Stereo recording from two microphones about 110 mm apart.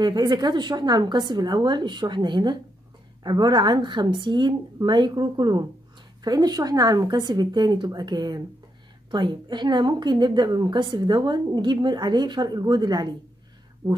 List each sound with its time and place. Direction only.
0.0 s a woman's voice: 40° right (ahead or behind)
13.8 s speech: 20° right (ahead or behind)